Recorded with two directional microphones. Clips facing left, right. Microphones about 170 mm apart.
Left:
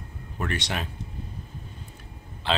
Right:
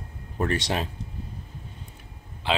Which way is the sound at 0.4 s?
30° right (ahead or behind).